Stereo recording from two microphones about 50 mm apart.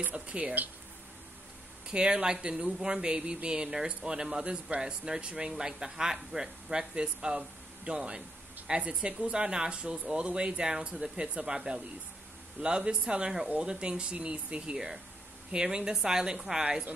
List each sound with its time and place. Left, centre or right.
0.1 s speech: right
1.9 s speech: centre